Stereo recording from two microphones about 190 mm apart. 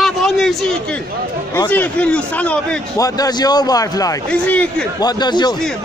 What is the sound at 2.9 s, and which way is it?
A man's voice, 20° left (ahead or behind).